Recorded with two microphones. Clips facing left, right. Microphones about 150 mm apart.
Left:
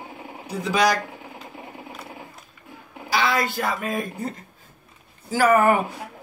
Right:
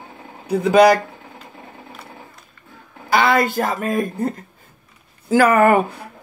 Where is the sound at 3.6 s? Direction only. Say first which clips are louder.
Right 5 dB; 45° right (ahead or behind).